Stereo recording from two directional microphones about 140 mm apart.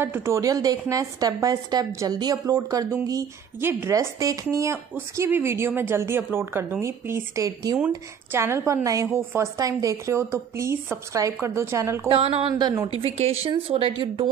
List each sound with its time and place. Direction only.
0.0 s a woman's voice: 15° right (ahead or behind)
12.1 s speech: 40° right (ahead or behind)
12.8 s speech: 40° right (ahead or behind)